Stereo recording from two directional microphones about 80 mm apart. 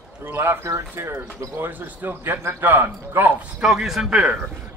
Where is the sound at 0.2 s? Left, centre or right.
Right.